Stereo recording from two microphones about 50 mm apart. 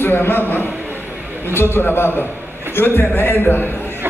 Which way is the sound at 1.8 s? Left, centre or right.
Left.